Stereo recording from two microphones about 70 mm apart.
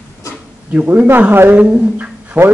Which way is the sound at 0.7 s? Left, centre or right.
Right.